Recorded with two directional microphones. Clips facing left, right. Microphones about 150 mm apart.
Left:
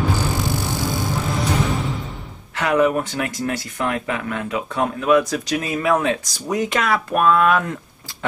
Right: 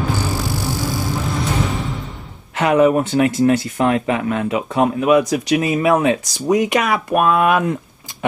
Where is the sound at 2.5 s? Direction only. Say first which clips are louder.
Right 4 dB; 20° right (ahead or behind).